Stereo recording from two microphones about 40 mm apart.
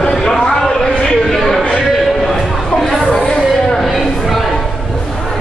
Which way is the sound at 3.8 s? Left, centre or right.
Centre.